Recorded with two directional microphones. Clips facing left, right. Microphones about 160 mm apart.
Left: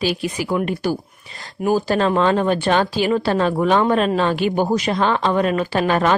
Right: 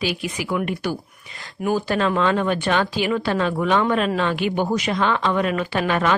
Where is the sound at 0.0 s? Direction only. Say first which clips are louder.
Left 4 dB; 35° left (ahead or behind).